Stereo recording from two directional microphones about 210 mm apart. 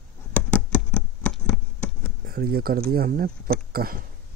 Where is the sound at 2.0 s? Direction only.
45° right (ahead or behind).